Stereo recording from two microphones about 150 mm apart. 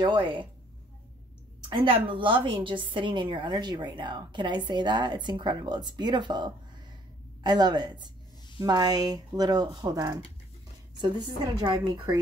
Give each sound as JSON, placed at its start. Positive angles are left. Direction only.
{"t": 0.0, "sound": "a woman's voice", "side_deg": -35}
{"t": 1.7, "sound": "a woman's voice", "side_deg": -30}